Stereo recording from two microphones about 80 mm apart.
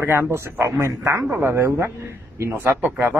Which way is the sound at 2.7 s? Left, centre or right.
Centre.